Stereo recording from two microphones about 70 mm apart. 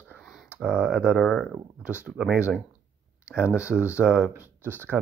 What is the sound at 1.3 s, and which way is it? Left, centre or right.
Speech, centre.